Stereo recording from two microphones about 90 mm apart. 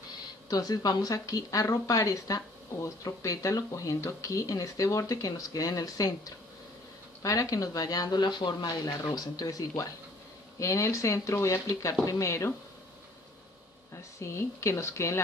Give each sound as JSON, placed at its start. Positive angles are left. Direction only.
{"t": 0.5, "sound": "speech", "side_deg": 45}
{"t": 14.2, "sound": "speech", "side_deg": 30}